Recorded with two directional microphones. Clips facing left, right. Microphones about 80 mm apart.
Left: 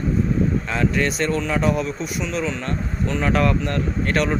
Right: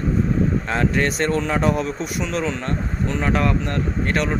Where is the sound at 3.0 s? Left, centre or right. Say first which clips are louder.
Left 1 dB; centre.